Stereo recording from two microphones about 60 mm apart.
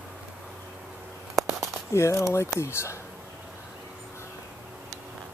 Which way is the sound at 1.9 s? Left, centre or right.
Left.